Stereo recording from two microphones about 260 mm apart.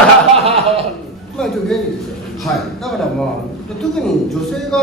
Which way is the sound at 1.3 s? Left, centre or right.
Centre.